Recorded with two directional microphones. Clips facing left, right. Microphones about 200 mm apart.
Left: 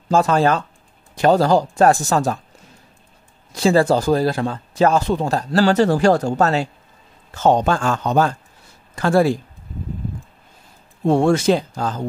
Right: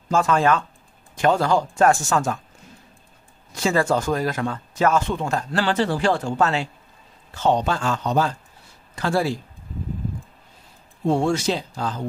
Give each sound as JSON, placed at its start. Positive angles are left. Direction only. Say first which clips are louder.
{"t": 0.1, "sound": "speech", "louder": "left 3 dB", "side_deg": 35}
{"t": 3.5, "sound": "speech", "louder": "left 5 dB", "side_deg": 35}
{"t": 11.1, "sound": "speech", "louder": "left 5 dB", "side_deg": 60}